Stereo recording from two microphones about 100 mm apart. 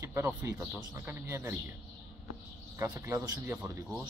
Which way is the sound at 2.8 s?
30° right (ahead or behind).